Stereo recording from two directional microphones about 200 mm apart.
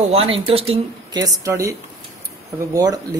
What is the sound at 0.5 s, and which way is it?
Speech, 30° right (ahead or behind).